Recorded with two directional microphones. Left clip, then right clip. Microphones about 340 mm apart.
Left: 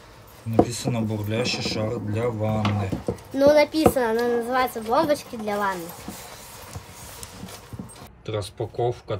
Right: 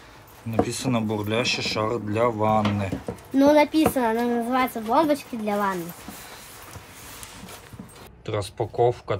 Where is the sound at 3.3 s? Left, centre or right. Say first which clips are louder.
Even; centre.